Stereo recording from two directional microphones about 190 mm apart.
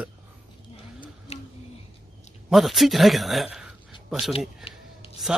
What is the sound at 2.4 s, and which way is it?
A man's voice, centre (ahead or behind).